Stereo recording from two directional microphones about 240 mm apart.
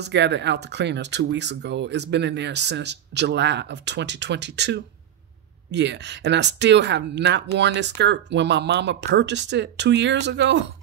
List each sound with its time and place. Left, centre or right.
0.0 s speech: right